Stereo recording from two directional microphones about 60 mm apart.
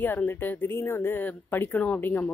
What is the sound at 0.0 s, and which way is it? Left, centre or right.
A woman's voice, left.